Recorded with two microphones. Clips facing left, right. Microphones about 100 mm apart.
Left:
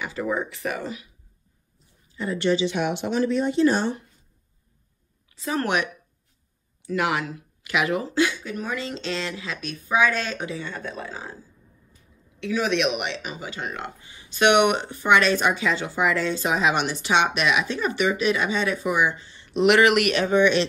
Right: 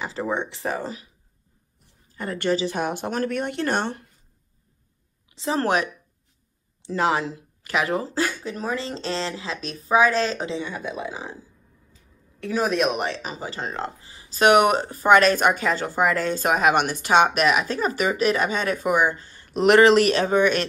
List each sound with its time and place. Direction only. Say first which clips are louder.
0.0 s a woman's voice: even; 30° right (ahead or behind)
2.0 s speech: left 1 dB; 50° right (ahead or behind)
5.3 s speech: right 2 dB; 30° right (ahead or behind); by 8.5 s 45° right (ahead or behind)
8.5 s a woman's voice: right 2 dB; 30° right (ahead or behind)
10.6 s speech: right 3 dB; 10° right (ahead or behind)
12.4 s speech: right 1 dB; 40° right (ahead or behind)